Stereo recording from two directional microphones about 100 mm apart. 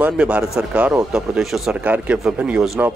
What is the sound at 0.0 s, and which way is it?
Speech, 10° right (ahead or behind).